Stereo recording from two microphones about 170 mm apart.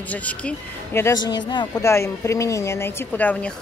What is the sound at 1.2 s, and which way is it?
Speech, 25° left (ahead or behind).